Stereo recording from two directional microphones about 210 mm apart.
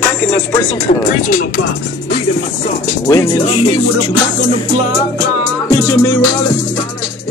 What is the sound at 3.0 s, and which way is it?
Music, 15° left (ahead or behind).